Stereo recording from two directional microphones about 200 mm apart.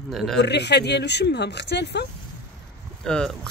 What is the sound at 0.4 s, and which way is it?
Speech, 60° left (ahead or behind).